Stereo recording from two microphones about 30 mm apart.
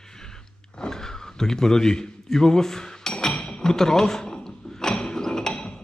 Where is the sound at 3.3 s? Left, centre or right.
Left.